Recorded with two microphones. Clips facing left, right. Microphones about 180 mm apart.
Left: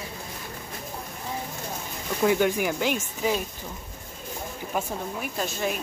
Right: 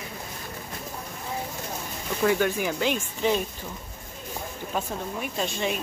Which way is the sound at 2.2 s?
15° left (ahead or behind).